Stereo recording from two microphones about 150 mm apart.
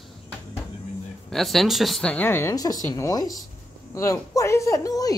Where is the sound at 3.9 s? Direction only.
20° left (ahead or behind).